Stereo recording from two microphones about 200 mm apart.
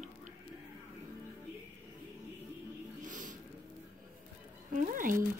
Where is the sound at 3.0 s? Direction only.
40° right (ahead or behind).